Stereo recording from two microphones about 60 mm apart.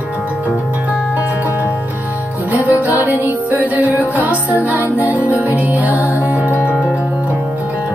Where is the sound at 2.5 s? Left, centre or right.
Right.